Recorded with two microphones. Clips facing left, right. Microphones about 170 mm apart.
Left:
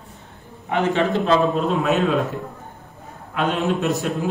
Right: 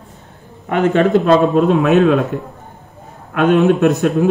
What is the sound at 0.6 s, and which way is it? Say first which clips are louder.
A man's voice: right 6 dB; 55° right (ahead or behind).